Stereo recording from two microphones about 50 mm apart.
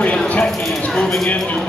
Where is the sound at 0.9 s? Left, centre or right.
Centre.